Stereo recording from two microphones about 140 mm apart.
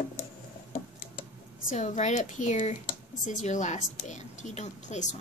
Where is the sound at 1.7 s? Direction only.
60° left (ahead or behind).